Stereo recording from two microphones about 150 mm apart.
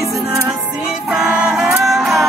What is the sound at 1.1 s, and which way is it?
Music, 10° right (ahead or behind).